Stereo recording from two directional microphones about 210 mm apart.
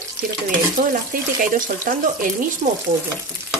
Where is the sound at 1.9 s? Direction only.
40° right (ahead or behind).